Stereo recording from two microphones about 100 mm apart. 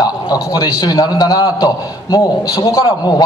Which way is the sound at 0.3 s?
40° left (ahead or behind).